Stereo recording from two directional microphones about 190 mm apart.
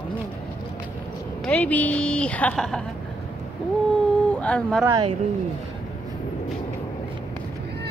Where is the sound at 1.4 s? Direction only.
10° left (ahead or behind).